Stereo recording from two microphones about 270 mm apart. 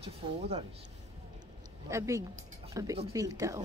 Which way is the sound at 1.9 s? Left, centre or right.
Centre.